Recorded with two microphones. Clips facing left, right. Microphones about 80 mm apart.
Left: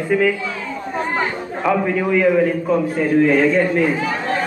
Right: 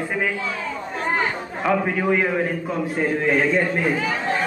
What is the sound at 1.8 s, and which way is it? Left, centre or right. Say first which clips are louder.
Speech: left 4 dB; right.